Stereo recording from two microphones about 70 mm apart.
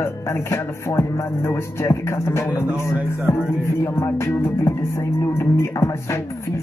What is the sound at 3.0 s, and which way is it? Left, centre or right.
Music, left.